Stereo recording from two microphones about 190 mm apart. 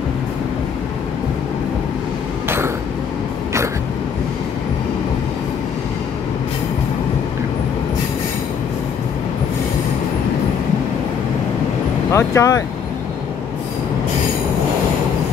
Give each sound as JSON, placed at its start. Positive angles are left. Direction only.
{"t": 2.4, "sound": "vehicle", "side_deg": -10}
{"t": 12.1, "sound": "speech", "side_deg": 15}